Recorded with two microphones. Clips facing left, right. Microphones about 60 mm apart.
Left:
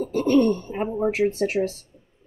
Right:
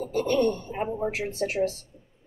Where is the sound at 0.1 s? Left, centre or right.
Left.